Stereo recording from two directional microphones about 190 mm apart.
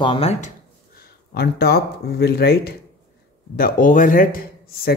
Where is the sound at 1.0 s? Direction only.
55° left (ahead or behind).